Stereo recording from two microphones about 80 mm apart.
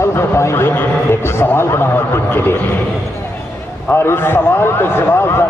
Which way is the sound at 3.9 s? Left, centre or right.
Left.